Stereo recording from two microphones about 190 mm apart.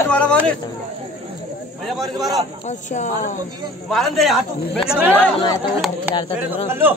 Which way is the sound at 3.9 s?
Centre (ahead or behind).